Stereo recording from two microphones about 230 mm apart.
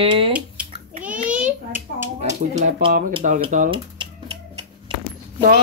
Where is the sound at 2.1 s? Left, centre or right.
Right.